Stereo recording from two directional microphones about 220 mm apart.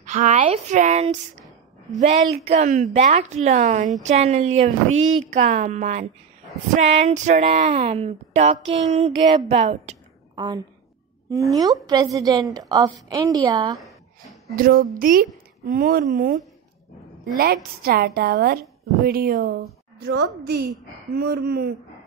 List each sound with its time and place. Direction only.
0.0 s speech: 35° right (ahead or behind)
2.4 s a woman's voice: 30° right (ahead or behind); by 13.7 s 15° right (ahead or behind)
14.5 s speech: 40° right (ahead or behind)
17.4 s a woman's voice: 45° right (ahead or behind)